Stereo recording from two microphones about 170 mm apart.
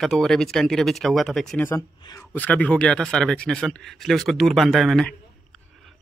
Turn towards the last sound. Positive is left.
turn(degrees=5)  # may be behind; listen again after turning